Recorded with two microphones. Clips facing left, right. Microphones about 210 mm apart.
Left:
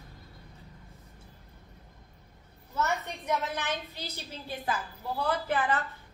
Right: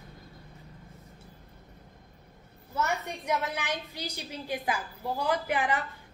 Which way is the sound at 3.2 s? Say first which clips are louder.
Even; 15° right (ahead or behind).